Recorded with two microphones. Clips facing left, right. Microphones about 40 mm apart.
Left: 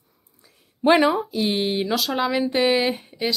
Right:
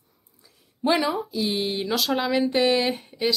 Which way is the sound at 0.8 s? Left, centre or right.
Left.